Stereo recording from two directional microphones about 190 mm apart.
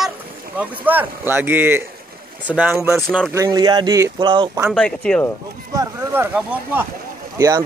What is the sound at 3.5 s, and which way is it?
Speech, 20° right (ahead or behind).